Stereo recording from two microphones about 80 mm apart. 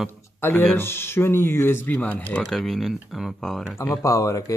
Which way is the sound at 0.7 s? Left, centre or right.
Left.